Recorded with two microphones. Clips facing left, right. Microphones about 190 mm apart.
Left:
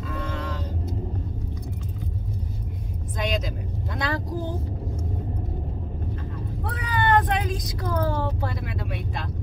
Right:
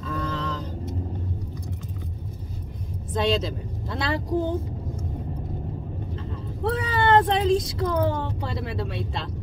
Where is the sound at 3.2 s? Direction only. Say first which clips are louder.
Right 3 dB; 30° right (ahead or behind).